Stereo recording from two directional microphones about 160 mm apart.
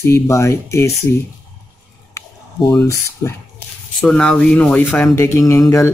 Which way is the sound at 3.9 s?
5° left (ahead or behind).